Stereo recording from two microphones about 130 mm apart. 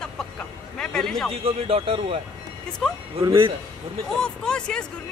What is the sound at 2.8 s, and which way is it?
Speech, centre (ahead or behind).